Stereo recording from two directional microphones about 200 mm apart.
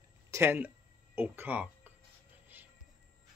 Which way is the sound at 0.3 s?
10° right (ahead or behind).